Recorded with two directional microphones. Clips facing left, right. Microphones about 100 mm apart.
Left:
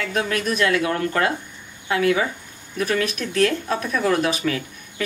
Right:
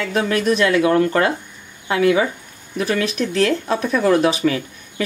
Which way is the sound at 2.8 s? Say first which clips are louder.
Right 3 dB; 30° right (ahead or behind).